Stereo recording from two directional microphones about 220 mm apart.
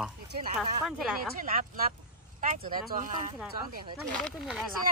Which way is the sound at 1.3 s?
40° right (ahead or behind).